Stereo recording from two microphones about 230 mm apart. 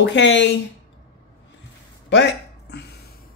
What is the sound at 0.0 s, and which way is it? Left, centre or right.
Speech, left.